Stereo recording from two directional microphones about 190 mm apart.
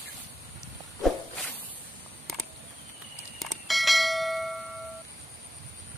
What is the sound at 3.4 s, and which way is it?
Bell, centre (ahead or behind).